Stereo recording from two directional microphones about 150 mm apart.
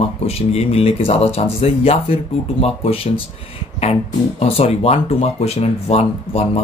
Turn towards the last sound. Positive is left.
turn(degrees=45)  # may be behind; listen again after turning